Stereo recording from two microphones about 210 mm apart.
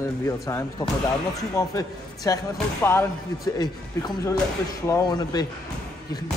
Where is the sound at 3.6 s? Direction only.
20° left (ahead or behind).